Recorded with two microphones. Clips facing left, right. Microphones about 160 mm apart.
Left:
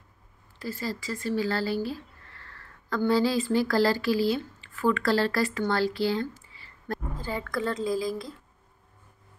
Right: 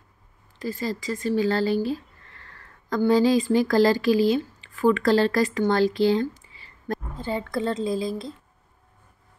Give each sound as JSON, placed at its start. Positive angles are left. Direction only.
{"t": 0.6, "sound": "speech", "side_deg": -20}
{"t": 2.9, "sound": "speech", "side_deg": -15}